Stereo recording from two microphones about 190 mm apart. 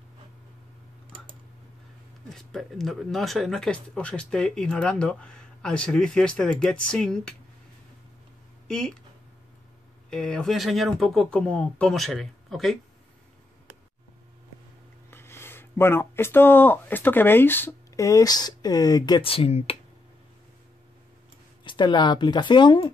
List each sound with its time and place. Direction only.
2.3 s speech: centre (ahead or behind)
8.6 s speech: 5° left (ahead or behind)
10.0 s speech: 5° left (ahead or behind)
15.0 s speech: 10° left (ahead or behind); by 19.8 s 30° left (ahead or behind)
21.6 s speech: 25° left (ahead or behind)